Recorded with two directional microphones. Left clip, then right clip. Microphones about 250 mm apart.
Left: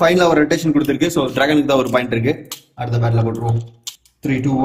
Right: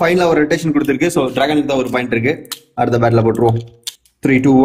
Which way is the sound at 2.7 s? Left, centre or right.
Centre.